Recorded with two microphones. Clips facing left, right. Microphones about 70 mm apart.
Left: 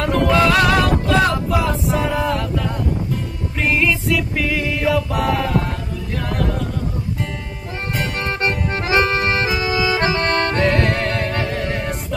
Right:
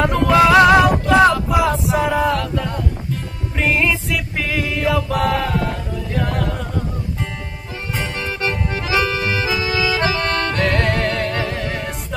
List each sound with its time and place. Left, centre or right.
0.0 s music: centre
1.9 s a sound: centre
3.5 s music: centre
8.7 s accordion: left
11.1 s music: centre